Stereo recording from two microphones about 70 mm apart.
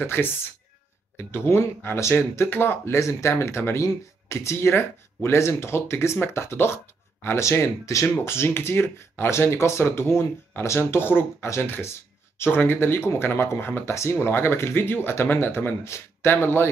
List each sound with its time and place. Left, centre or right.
0.0 s speech: left
7.8 s speech: left
11.4 s speech: left
12.4 s speech: left
15.8 s speech: left